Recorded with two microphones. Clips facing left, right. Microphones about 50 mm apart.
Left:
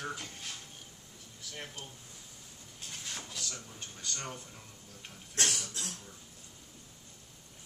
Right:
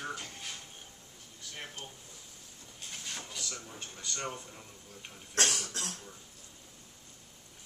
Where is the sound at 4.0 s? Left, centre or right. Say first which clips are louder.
Right 3 dB; centre.